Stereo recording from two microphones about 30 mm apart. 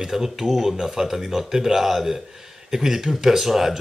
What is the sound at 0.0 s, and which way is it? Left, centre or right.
Speech, centre.